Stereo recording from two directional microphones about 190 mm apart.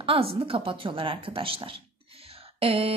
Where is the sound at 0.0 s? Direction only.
30° right (ahead or behind).